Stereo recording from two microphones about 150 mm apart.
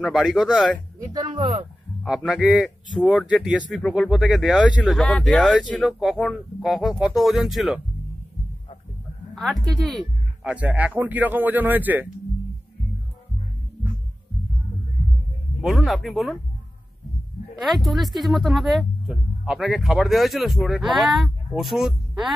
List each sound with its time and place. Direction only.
0.1 s speech: centre (ahead or behind)
1.1 s speech: 30° right (ahead or behind)
2.0 s speech: 5° right (ahead or behind)
9.3 s speech: centre (ahead or behind)
10.5 s a man's voice: 10° right (ahead or behind)
15.6 s speech: centre (ahead or behind)
17.6 s speech: centre (ahead or behind)